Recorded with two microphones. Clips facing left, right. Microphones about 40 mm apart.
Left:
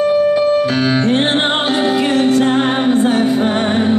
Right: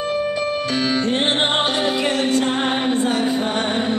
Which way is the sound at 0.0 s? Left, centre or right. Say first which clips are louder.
Left 9 dB; centre.